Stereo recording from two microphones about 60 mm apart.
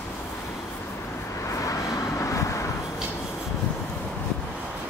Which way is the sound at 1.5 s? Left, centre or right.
Left.